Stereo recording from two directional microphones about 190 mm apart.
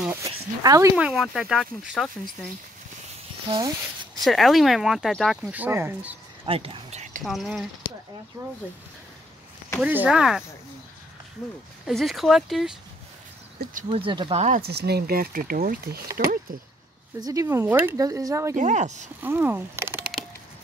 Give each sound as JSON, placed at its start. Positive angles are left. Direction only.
{"t": 0.1, "sound": "speech", "side_deg": -15}
{"t": 0.9, "sound": "speech", "side_deg": -5}
{"t": 3.4, "sound": "speech", "side_deg": -25}
{"t": 4.2, "sound": "speech", "side_deg": 0}
{"t": 6.4, "sound": "speech", "side_deg": -30}
{"t": 7.2, "sound": "speech", "side_deg": 0}
{"t": 8.4, "sound": "speech", "side_deg": -15}
{"t": 9.8, "sound": "speech", "side_deg": -5}
{"t": 11.8, "sound": "speech", "side_deg": 0}
{"t": 13.8, "sound": "speech", "side_deg": -30}
{"t": 14.7, "sound": "speech", "side_deg": -60}
{"t": 17.2, "sound": "speech", "side_deg": -15}
{"t": 18.6, "sound": "speech", "side_deg": -40}
{"t": 19.2, "sound": "speech", "side_deg": -10}